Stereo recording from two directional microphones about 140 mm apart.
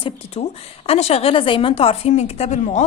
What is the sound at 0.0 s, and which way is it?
A woman's voice, 45° left (ahead or behind).